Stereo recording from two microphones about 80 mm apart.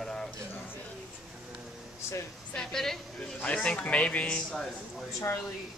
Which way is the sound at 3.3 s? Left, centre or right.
Centre.